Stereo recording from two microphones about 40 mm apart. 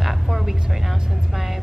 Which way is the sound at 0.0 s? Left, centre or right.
Centre.